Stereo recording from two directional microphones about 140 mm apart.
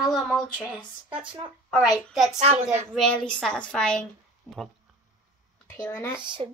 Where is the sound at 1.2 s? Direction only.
35° right (ahead or behind).